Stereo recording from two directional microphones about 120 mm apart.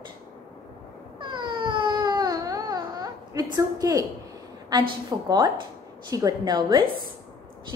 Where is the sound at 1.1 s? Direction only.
40° right (ahead or behind).